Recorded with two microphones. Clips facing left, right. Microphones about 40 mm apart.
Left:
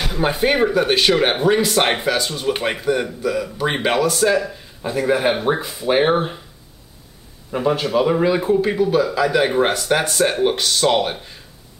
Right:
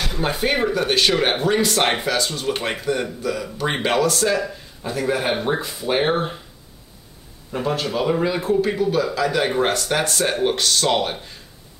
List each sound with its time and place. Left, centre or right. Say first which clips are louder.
0.0 s speech: left 3 dB; centre
7.5 s speech: left 5 dB; centre